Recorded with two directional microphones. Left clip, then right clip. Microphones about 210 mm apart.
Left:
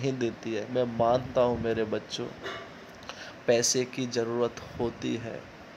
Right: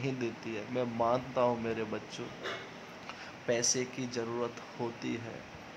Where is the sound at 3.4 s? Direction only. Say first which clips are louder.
Left 7 dB; 20° left (ahead or behind).